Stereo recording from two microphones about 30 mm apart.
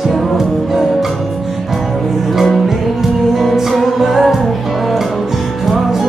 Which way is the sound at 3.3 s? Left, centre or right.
Centre.